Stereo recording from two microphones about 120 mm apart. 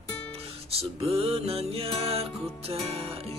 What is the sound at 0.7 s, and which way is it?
Music, 55° right (ahead or behind).